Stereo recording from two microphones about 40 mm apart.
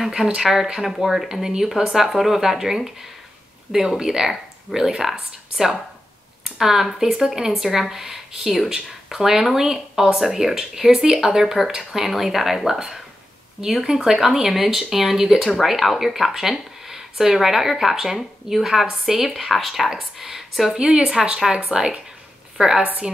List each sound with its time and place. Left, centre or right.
0.4 s speech: centre
22.6 s a woman's voice: right